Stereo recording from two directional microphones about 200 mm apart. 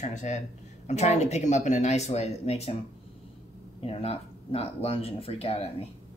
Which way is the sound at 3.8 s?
30° left (ahead or behind).